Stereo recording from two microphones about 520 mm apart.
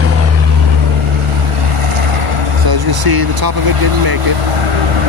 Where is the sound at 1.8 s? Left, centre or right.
Right.